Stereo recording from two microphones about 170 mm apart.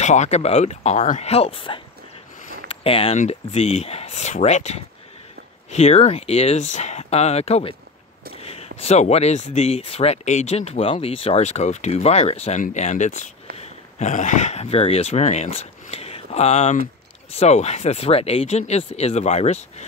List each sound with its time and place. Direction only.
0.0 s speech: 45° left (ahead or behind)